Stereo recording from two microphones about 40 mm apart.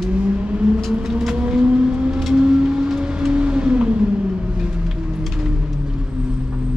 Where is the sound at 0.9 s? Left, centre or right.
Centre.